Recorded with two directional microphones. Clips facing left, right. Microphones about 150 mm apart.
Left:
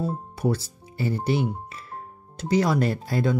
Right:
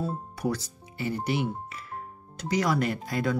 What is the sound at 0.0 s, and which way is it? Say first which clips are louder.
Speech: left 4 dB; 25° left (ahead or behind).